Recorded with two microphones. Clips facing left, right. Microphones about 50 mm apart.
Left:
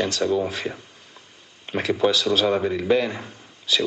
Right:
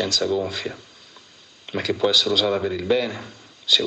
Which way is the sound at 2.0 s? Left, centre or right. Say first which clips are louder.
Even; left.